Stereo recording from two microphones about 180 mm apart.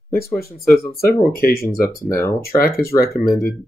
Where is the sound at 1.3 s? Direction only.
60° left (ahead or behind).